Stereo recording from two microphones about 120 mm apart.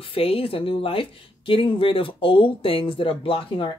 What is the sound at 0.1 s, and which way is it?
Speech, 50° left (ahead or behind).